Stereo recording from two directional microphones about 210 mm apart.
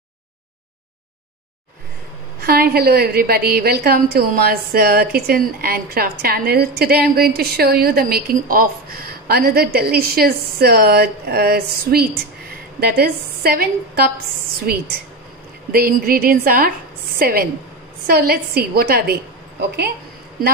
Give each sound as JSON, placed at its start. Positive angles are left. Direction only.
{"t": 2.4, "sound": "a woman's voice", "side_deg": -45}